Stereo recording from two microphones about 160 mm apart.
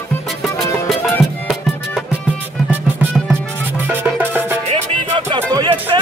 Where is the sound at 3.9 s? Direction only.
15° right (ahead or behind).